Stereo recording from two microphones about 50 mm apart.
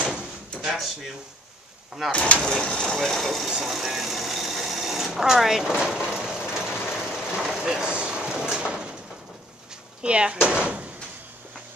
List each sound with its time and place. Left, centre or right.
0.6 s drawer open or close: centre
2.0 s speech: left
2.4 s vehicle: centre; by 8.9 s right
10.0 s speech: right